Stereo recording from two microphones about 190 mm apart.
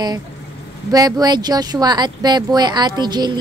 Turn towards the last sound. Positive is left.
turn(degrees=-20)  # may be behind; listen again after turning